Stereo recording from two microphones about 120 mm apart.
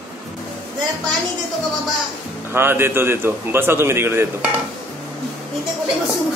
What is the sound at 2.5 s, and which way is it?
A man's voice, 20° right (ahead or behind).